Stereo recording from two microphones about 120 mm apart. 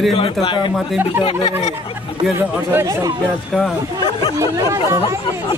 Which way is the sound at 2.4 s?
20° right (ahead or behind).